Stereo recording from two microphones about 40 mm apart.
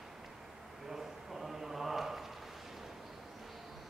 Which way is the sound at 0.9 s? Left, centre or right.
Centre.